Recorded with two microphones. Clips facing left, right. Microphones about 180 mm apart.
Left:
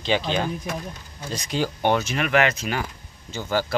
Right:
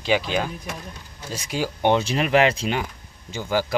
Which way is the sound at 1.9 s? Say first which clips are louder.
Right 4 dB; 30° right (ahead or behind).